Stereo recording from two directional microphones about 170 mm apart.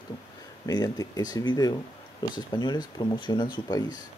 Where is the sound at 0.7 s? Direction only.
20° left (ahead or behind).